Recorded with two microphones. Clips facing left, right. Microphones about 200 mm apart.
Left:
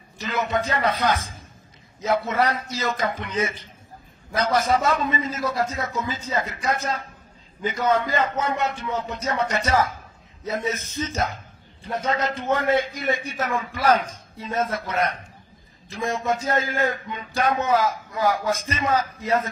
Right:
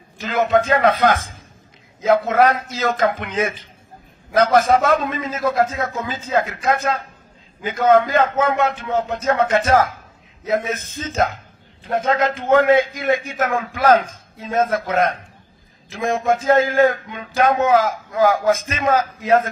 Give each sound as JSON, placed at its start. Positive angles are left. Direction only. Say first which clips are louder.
{"t": 0.2, "sound": "a man's voice", "louder": "right 7 dB", "side_deg": -50}